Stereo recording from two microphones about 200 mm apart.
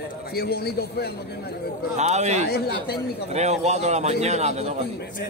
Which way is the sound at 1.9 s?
35° right (ahead or behind).